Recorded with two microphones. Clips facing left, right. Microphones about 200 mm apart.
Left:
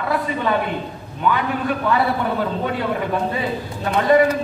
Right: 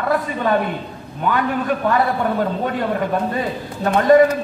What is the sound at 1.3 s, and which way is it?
Speech, 45° right (ahead or behind).